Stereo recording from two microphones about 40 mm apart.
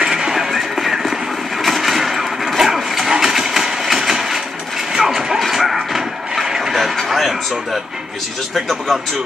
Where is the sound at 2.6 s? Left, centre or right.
Centre.